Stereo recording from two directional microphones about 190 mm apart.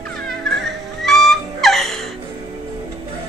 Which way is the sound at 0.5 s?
Centre (ahead or behind).